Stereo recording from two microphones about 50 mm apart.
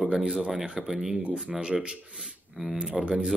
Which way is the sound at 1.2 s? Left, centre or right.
Right.